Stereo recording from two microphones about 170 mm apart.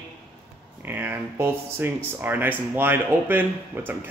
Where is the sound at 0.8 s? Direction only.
10° right (ahead or behind).